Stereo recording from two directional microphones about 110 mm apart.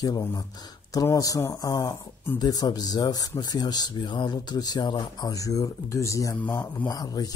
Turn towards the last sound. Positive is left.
turn(degrees=35)  # may be behind; listen again after turning